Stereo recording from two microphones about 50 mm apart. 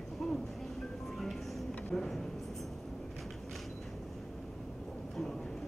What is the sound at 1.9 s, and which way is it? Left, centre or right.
Speech, centre.